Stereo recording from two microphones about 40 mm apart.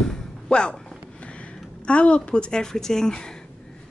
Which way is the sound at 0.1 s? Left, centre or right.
Left.